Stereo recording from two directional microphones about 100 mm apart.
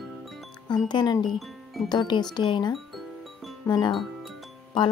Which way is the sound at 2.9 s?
Centre (ahead or behind).